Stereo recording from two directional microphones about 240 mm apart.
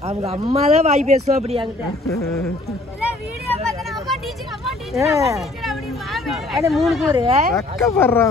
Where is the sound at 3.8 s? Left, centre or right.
Centre.